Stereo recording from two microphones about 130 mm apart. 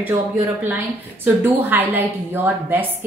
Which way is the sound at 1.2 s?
15° right (ahead or behind).